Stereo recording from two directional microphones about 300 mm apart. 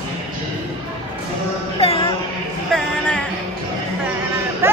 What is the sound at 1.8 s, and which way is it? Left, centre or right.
Music, centre.